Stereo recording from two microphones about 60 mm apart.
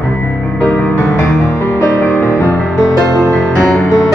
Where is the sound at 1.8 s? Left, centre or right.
Left.